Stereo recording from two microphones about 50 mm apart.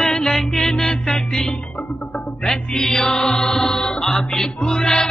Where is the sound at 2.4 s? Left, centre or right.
Centre.